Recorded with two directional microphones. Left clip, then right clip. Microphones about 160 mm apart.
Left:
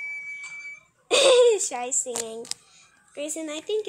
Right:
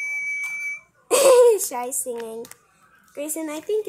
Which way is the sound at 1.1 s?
Centre (ahead or behind).